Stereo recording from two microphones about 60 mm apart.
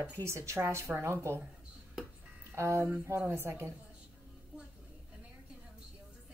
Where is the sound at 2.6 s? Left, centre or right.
Right.